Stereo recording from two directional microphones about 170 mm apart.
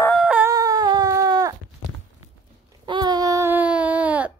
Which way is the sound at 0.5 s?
20° right (ahead or behind).